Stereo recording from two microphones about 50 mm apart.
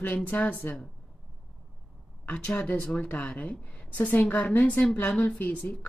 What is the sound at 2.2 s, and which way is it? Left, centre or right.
A woman's voice, left.